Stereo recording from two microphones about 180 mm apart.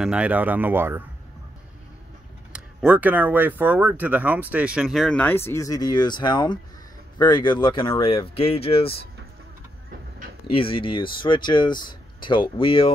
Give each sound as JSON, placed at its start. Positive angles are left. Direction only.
{"t": 0.0, "sound": "speech", "side_deg": -5}
{"t": 2.5, "sound": "speech", "side_deg": -5}
{"t": 10.4, "sound": "speech", "side_deg": 30}